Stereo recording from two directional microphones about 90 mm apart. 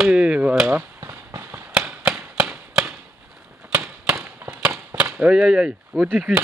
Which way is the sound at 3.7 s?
10° right (ahead or behind).